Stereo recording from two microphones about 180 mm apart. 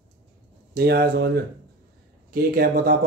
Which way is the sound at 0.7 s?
60° right (ahead or behind).